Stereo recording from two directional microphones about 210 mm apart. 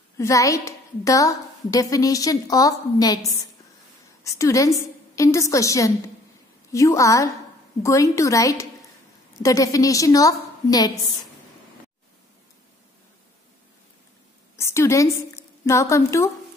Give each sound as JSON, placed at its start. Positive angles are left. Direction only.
{"t": 0.2, "sound": "a woman's voice", "side_deg": 15}
{"t": 14.6, "sound": "a woman's voice", "side_deg": 15}